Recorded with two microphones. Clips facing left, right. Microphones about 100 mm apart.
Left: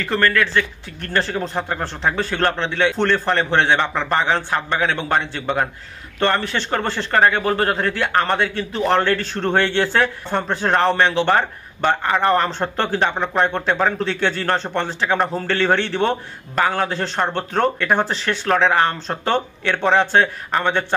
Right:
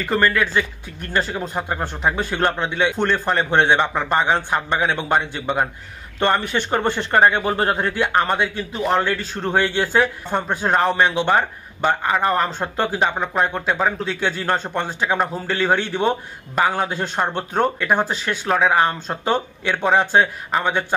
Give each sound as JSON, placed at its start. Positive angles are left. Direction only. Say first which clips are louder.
{"t": 0.0, "sound": "speech", "louder": "even", "side_deg": -10}